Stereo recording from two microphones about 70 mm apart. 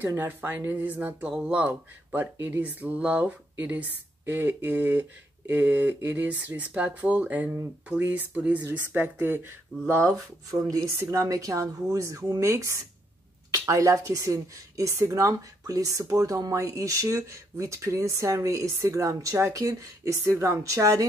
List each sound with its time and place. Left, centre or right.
0.2 s speech: right; by 1.7 s centre
1.7 s a woman's voice: right
10.1 s speech: right